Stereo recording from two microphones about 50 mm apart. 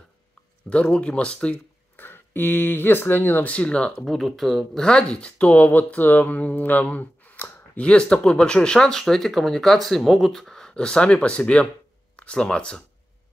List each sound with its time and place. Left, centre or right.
0.7 s speech: centre
2.0 s speech: left
3.4 s speech: left
4.0 s speech: centre
4.8 s speech: centre
5.5 s speech: left
7.7 s speech: left
10.7 s speech: centre